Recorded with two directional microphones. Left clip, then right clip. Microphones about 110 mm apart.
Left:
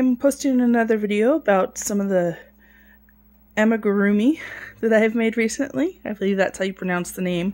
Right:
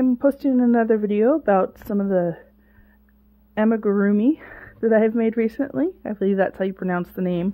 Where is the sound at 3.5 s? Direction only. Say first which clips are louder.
Left 1 dB; 15° left (ahead or behind).